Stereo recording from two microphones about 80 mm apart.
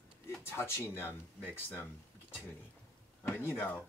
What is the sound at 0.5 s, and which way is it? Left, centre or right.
Speech, left.